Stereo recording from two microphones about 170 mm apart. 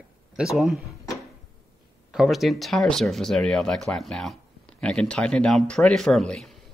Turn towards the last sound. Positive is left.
turn(degrees=0)  # may be behind; listen again after turning